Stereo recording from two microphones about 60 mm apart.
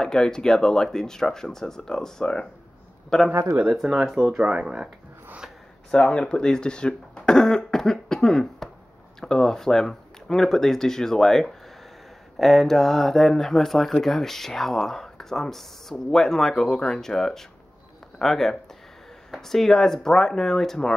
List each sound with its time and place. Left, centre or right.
0.0 s speech: centre
3.6 s speech: centre
4.4 s speech: centre
5.9 s speech: centre